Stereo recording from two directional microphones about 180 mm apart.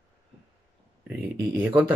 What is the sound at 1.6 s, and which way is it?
Speech, 10° right (ahead or behind).